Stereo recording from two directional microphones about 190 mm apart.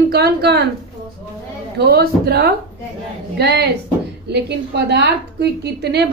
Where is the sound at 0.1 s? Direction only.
60° right (ahead or behind).